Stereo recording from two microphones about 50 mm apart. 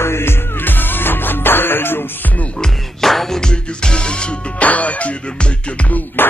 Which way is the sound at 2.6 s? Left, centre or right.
Centre.